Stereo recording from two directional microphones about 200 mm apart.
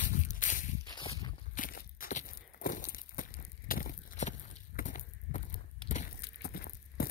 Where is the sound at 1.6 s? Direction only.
45° left (ahead or behind).